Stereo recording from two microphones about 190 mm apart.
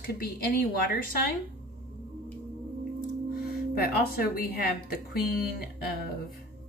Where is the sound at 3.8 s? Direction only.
50° left (ahead or behind).